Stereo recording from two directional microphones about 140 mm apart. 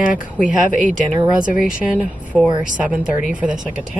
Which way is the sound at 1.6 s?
10° right (ahead or behind).